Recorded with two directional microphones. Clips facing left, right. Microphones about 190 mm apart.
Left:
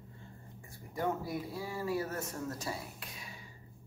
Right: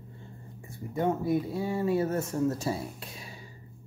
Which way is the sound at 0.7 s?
25° right (ahead or behind).